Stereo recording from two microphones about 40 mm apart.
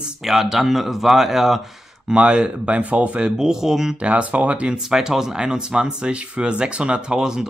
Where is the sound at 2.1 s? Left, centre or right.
Right.